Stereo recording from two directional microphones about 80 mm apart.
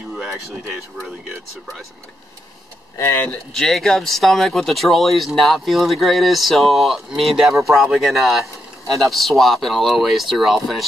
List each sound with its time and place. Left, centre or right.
0.1 s a sound: centre
0.7 s speech: centre
3.0 s speech: left
3.5 s speech: centre